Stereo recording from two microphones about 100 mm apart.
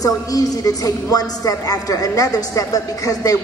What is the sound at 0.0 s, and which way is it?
A woman's voice, 35° left (ahead or behind).